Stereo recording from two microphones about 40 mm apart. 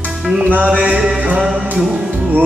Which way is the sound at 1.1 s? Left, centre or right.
Right.